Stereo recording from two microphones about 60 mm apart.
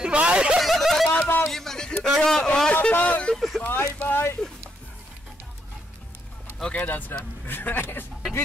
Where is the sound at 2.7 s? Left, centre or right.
Left.